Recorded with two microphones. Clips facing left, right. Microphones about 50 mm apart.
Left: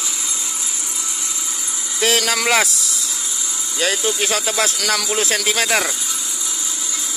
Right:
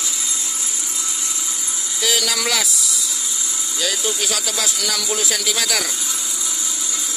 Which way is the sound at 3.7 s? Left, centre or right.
Left.